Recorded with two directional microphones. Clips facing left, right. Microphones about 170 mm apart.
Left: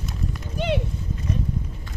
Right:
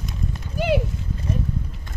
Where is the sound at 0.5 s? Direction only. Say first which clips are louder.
Right 4 dB; 5° right (ahead or behind).